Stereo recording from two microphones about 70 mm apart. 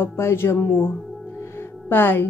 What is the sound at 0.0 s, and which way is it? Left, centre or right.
Music, left.